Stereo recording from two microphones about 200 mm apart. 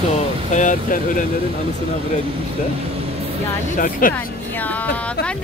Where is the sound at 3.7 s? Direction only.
45° left (ahead or behind).